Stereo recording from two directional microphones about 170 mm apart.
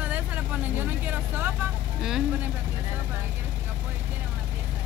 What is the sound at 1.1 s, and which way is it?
Speech, 10° right (ahead or behind).